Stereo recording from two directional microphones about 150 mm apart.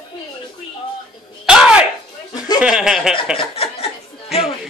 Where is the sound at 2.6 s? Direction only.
5° right (ahead or behind).